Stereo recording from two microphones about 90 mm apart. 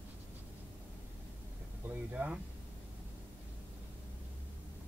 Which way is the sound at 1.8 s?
15° right (ahead or behind).